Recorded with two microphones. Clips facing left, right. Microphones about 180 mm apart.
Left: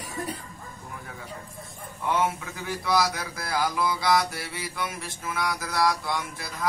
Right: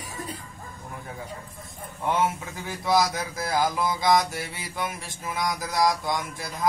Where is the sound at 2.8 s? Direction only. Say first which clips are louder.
Right 3 dB; 20° right (ahead or behind).